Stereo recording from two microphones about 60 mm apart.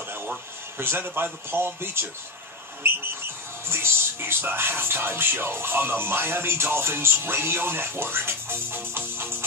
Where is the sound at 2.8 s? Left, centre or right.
Right.